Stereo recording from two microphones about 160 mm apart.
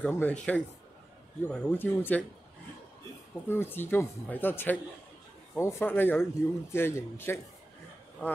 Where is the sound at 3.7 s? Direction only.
15° left (ahead or behind).